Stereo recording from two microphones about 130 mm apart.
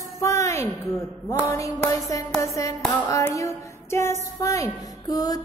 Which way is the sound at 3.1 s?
25° left (ahead or behind).